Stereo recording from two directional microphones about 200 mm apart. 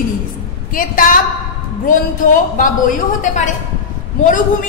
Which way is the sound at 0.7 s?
45° left (ahead or behind).